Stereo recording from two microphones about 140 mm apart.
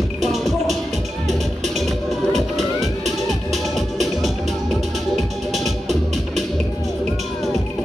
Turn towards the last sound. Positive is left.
turn(degrees=0)  # may be behind; listen again after turning